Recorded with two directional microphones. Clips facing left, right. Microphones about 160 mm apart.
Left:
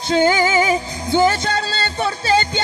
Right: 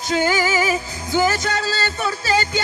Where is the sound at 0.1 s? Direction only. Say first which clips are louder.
Left 4 dB; 25° left (ahead or behind).